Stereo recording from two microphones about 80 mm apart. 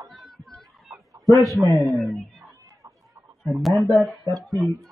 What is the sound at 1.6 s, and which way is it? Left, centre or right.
Speech, right.